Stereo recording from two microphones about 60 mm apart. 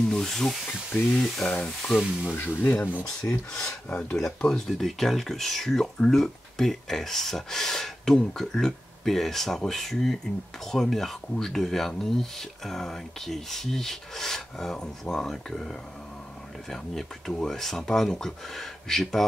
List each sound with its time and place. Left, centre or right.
0.0 s speech: centre
1.4 s speech: centre
1.9 s speech: centre
2.3 s speech: left
3.2 s speech: centre
17.4 s speech: centre